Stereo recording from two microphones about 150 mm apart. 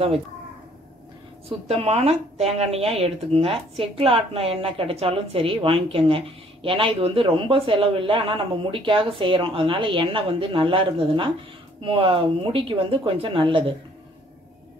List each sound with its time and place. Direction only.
1.7 s speech: 45° right (ahead or behind)